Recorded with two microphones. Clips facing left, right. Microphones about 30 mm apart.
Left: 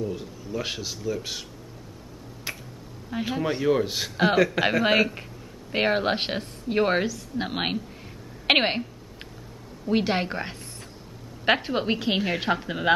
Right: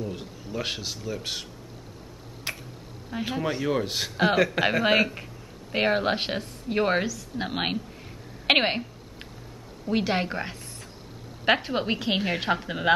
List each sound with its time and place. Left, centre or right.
0.1 s speech: centre
2.5 s finger snapping: centre
3.3 s a man's voice: centre
9.8 s a woman's voice: centre